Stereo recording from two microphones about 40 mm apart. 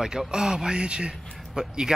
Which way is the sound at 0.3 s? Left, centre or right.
Centre.